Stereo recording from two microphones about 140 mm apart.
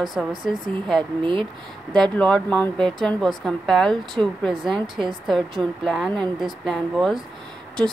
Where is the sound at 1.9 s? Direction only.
5° left (ahead or behind).